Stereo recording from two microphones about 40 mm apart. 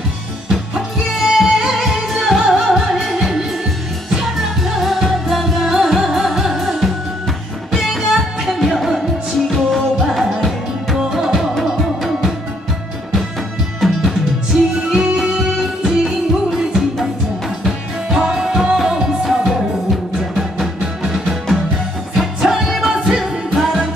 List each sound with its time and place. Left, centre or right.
0.5 s music: centre
2.0 s music: centre
11.0 s music: centre
13.7 s music: centre
22.4 s music: centre